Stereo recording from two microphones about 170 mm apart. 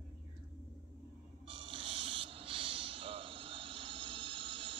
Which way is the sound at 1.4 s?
30° right (ahead or behind).